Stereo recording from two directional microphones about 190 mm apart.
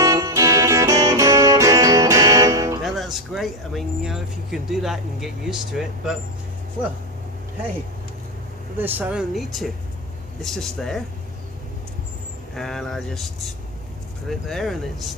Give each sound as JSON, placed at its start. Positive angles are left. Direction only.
{"t": 0.0, "sound": "music", "side_deg": -15}
{"t": 2.8, "sound": "speech", "side_deg": 0}
{"t": 8.7, "sound": "speech", "side_deg": -10}
{"t": 12.5, "sound": "speech", "side_deg": 0}
{"t": 14.5, "sound": "speech", "side_deg": 0}